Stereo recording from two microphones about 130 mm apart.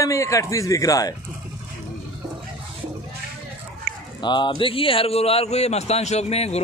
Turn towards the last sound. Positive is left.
turn(degrees=55)  # may be behind; listen again after turning